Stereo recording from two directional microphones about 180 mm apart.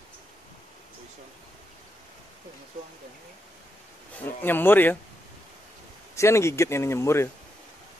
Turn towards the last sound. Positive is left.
turn(degrees=15)  # may be behind; listen again after turning